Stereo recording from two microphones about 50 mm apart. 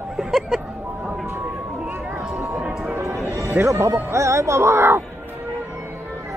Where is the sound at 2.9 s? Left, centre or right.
Right.